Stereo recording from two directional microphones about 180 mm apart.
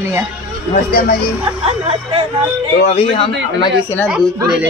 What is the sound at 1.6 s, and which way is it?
Speech, 30° right (ahead or behind).